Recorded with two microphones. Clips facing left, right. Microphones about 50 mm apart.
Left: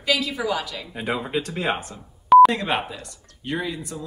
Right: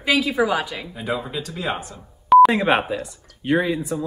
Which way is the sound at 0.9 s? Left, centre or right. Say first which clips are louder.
Left 2 dB; left.